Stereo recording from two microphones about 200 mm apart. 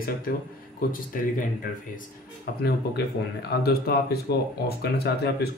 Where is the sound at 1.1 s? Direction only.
45° left (ahead or behind).